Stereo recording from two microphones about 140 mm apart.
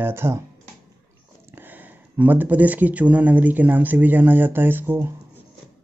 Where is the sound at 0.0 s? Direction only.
20° right (ahead or behind).